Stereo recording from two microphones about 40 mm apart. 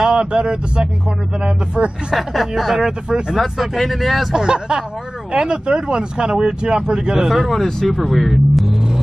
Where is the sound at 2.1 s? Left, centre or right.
Centre.